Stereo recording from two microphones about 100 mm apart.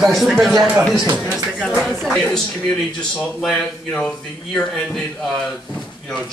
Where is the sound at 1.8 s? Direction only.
Centre (ahead or behind).